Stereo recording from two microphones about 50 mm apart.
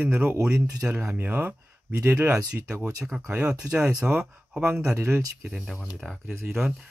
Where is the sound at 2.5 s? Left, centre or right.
Centre.